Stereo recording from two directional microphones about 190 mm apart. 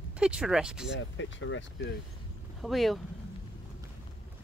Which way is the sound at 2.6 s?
Centre (ahead or behind).